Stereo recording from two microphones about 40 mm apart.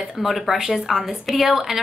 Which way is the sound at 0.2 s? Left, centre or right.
Centre.